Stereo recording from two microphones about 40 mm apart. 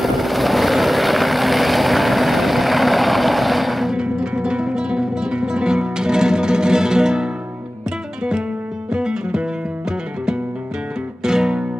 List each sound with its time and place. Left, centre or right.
0.0 s vehicle: centre
3.9 s music: right
8.9 s music: centre